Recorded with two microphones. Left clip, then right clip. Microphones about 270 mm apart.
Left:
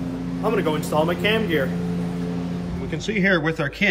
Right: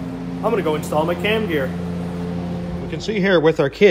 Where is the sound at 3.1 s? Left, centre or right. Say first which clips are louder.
Right 5 dB; centre.